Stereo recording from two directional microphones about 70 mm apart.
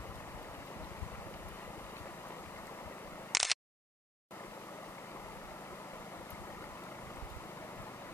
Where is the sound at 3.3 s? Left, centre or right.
Centre.